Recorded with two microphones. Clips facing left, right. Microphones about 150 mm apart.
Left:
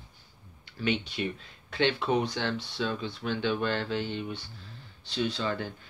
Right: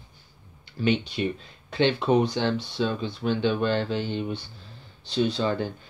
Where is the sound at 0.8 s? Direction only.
25° right (ahead or behind).